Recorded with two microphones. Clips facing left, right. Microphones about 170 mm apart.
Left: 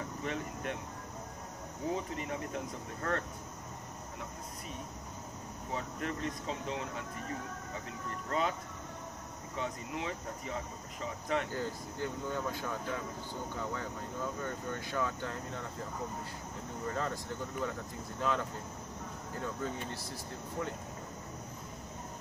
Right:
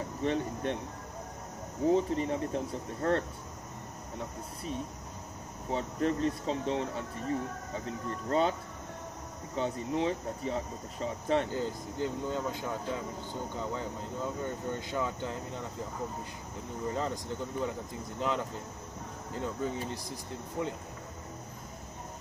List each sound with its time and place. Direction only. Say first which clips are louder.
0.2 s speech: right 9 dB; 30° right (ahead or behind)
1.9 s speech: right 9 dB; 30° right (ahead or behind)
5.7 s speech: right 8 dB; 30° right (ahead or behind)
9.6 s speech: right 7 dB; 30° right (ahead or behind)
11.5 s speech: right 4 dB; 20° right (ahead or behind)
16.8 s speech: right 3 dB; 20° right (ahead or behind)
19.3 s speech: right 4 dB; 20° right (ahead or behind)